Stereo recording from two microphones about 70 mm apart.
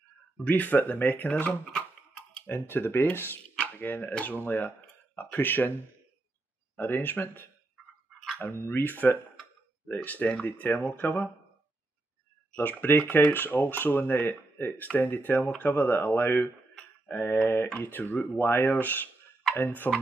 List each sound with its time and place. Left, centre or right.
0.4 s speech: left
1.3 s speech: centre
2.7 s speech: left
6.8 s speech: left
8.9 s speech: left
12.5 s speech: left